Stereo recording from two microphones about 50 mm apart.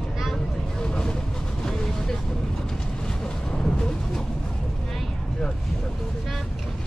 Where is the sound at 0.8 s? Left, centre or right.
Centre.